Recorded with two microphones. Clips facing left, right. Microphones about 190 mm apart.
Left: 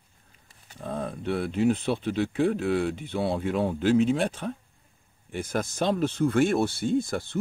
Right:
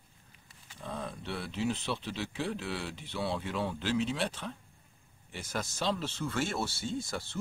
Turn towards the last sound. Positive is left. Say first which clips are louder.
# left 10 dB
turn(degrees=55)  # may be behind; listen again after turning